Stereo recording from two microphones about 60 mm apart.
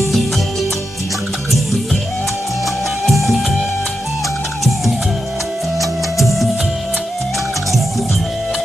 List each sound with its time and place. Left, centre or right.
0.0 s music: centre
3.1 s music: centre
5.8 s music: centre